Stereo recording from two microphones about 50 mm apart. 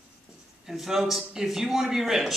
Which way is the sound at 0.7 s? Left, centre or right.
Centre.